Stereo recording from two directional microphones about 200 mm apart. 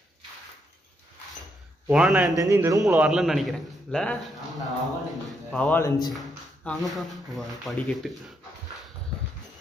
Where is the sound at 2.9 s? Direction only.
5° right (ahead or behind).